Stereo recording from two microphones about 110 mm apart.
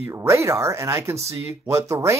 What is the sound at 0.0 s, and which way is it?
Speech, 25° right (ahead or behind).